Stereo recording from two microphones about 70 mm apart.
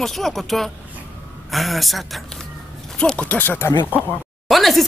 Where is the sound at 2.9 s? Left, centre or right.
Centre.